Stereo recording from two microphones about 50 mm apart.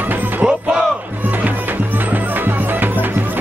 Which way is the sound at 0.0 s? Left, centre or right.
Right.